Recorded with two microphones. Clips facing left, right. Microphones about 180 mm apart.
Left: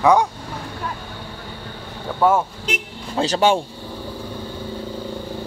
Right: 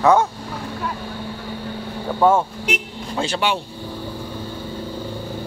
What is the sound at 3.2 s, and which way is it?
Speech, 40° left (ahead or behind).